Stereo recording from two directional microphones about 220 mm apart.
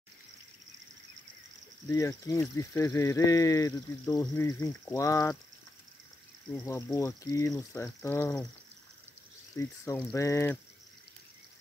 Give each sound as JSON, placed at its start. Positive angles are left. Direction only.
{"t": 1.9, "sound": "speech", "side_deg": 15}
{"t": 6.6, "sound": "speech", "side_deg": 15}
{"t": 9.6, "sound": "speech", "side_deg": 15}